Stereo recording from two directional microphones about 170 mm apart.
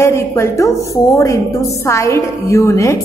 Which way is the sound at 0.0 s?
15° left (ahead or behind).